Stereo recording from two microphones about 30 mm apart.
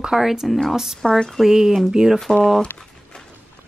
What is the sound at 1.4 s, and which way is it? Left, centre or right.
Speech, centre.